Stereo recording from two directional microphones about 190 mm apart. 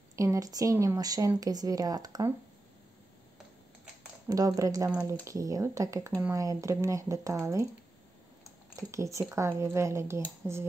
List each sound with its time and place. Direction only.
0.1 s speech: 15° right (ahead or behind)
4.3 s speech: 20° right (ahead or behind)
8.7 s speech: 15° right (ahead or behind)